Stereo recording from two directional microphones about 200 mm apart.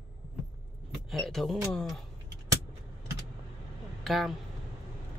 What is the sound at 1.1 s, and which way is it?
Speech, centre (ahead or behind).